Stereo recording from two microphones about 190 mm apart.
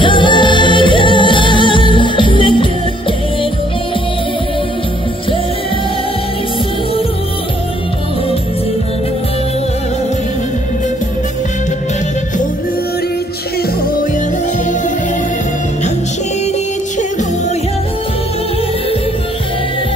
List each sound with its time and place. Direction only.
0.0 s music: 25° left (ahead or behind)